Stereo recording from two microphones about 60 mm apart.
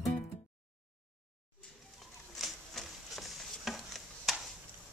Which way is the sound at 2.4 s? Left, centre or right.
Centre.